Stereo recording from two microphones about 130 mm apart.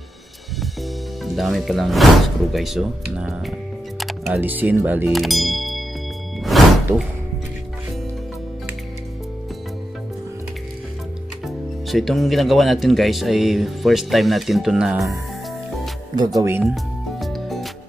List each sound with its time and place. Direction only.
1.2 s speech: centre (ahead or behind)
5.1 s speech: centre (ahead or behind)
6.5 s music: centre (ahead or behind)
11.4 s speech: centre (ahead or behind)
16.3 s speech: 20° right (ahead or behind)
16.6 s music: centre (ahead or behind)